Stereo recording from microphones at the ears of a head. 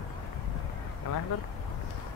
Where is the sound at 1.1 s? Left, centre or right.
Left.